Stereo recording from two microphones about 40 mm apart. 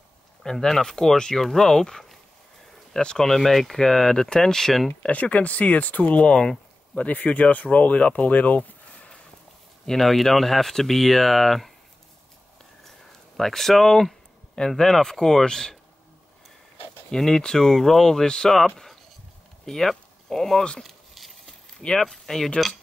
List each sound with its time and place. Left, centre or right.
0.4 s speech: centre
3.3 s speech: centre
5.0 s speech: left
6.2 s speech: centre
7.0 s speech: left
9.8 s speech: centre
13.4 s speech: centre
17.1 s speech: centre
19.6 s speech: centre
20.8 s a sound: centre
21.9 s speech: centre